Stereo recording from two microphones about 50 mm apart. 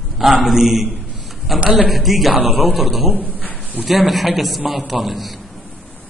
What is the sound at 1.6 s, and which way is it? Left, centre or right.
Speech, right.